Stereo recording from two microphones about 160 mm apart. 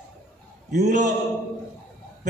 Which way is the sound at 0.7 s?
50° right (ahead or behind).